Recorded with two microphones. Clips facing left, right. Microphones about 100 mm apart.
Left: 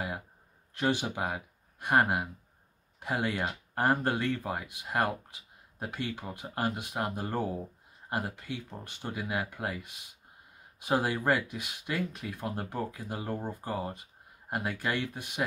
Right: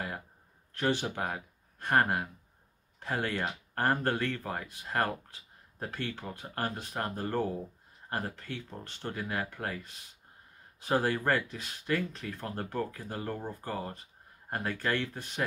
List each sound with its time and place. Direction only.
0.7 s speech: 15° left (ahead or behind)